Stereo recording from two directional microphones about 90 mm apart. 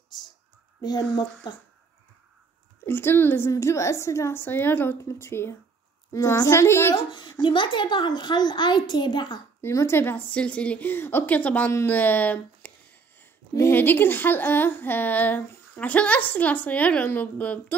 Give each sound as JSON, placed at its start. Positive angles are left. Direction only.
{"t": 0.7, "sound": "speech", "side_deg": 50}
{"t": 2.8, "sound": "a woman's voice", "side_deg": 25}
{"t": 7.1, "sound": "a child's voice", "side_deg": 60}
{"t": 9.6, "sound": "speech", "side_deg": 30}